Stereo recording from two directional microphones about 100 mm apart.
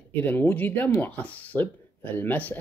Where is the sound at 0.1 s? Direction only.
20° left (ahead or behind).